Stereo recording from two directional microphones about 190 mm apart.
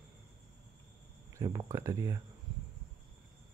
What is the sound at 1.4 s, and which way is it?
Speech, 20° right (ahead or behind).